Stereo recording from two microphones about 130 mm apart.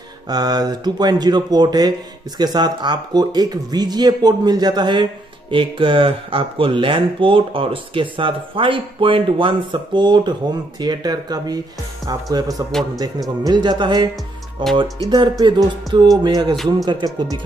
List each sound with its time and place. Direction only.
0.3 s speech: 30° right (ahead or behind)